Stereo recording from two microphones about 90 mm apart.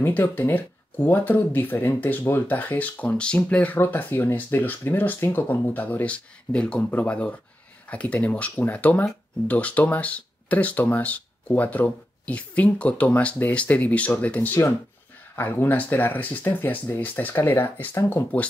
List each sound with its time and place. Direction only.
0.0 s speech: 20° left (ahead or behind)